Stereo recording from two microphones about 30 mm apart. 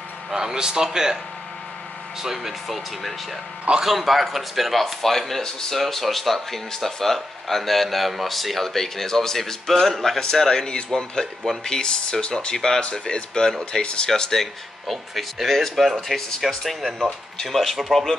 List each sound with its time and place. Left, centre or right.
0.3 s a man's voice: right
2.2 s speech: centre
5.4 s speech: centre
5.8 s speech: centre; by 12.5 s left
12.5 s speech: centre
12.9 s speech: left
14.4 s speech: centre